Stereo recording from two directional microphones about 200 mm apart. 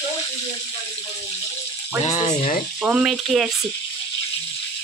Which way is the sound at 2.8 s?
5° right (ahead or behind).